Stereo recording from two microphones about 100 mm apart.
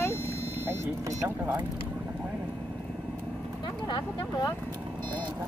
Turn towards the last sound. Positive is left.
turn(degrees=50)  # may be behind; listen again after turning